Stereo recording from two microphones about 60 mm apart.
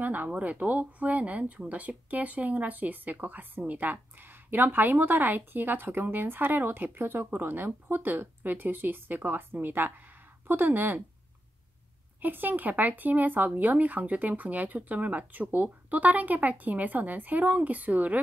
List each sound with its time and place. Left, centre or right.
0.0 s speech: right
12.2 s speech: right